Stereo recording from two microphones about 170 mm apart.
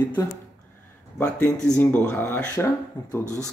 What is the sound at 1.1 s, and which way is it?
Speech, 5° left (ahead or behind).